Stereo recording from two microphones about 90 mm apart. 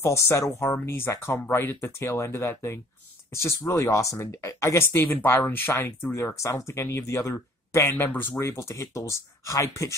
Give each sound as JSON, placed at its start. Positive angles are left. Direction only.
{"t": 0.0, "sound": "speech", "side_deg": 30}